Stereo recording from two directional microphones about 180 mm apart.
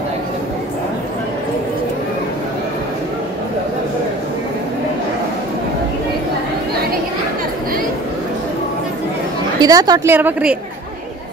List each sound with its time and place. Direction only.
9.6 s a woman's voice: 20° right (ahead or behind)
10.1 s a woman's voice: 10° right (ahead or behind)